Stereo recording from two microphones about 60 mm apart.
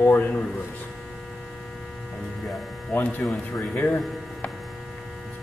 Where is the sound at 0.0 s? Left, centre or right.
Left.